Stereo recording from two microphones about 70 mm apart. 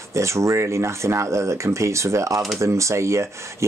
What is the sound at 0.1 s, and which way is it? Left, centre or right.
Speech, right.